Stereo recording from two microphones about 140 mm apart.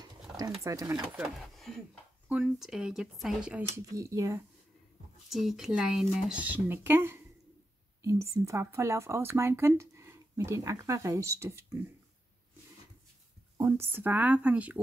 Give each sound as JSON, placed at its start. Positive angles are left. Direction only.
{"t": 0.7, "sound": "speech", "side_deg": -25}
{"t": 1.1, "sound": "speech", "side_deg": 0}
{"t": 3.7, "sound": "speech", "side_deg": -20}
{"t": 5.3, "sound": "speech", "side_deg": 0}
{"t": 6.4, "sound": "speech", "side_deg": -15}
{"t": 13.6, "sound": "speech", "side_deg": -20}